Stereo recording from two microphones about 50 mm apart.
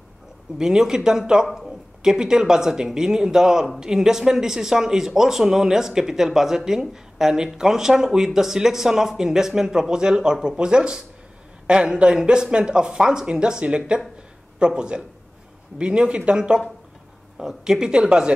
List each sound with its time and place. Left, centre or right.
0.6 s speech: centre